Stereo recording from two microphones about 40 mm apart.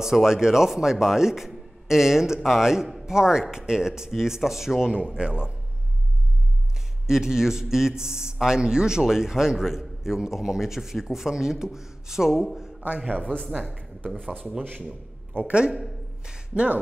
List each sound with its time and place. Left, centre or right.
0.0 s speech: centre
4.9 s speech: right
7.1 s speech: centre
12.8 s a man's voice: right
13.5 s speech: centre
14.9 s a sound: right
15.7 s a sound: centre